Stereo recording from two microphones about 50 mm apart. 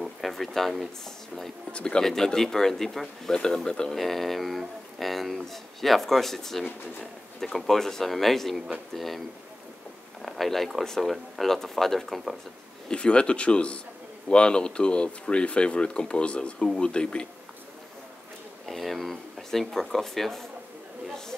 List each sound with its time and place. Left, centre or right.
0.0 s speech: centre
1.7 s speech: centre
4.0 s speech: centre
10.2 s speech: centre
12.8 s speech: centre
18.7 s speech: centre